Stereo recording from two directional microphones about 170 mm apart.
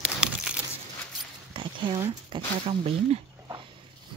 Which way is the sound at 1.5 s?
30° right (ahead or behind).